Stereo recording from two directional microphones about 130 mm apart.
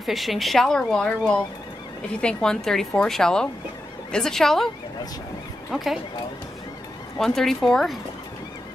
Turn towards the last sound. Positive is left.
turn(degrees=5)  # may be behind; listen again after turning